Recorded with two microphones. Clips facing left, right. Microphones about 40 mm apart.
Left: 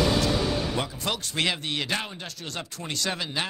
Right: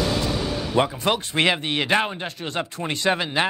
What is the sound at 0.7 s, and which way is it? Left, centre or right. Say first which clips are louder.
Speech: right 8 dB; right.